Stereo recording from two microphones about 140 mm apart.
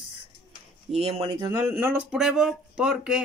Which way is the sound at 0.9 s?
45° right (ahead or behind).